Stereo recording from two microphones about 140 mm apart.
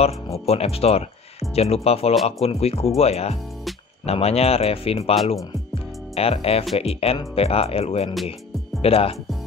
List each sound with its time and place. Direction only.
0.0 s speech: 45° left (ahead or behind)
5.1 s speech: centre (ahead or behind)
6.1 s speech: 45° left (ahead or behind)